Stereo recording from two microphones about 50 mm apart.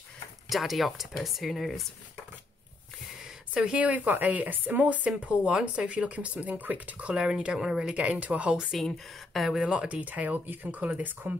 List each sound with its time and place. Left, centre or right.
0.5 s speech: centre
3.5 s speech: right
7.9 s speech: right
8.8 s speech: centre
9.6 s speech: right